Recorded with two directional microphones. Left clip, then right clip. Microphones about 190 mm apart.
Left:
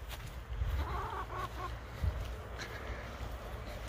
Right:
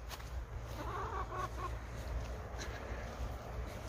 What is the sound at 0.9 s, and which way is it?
Vehicle, 50° left (ahead or behind).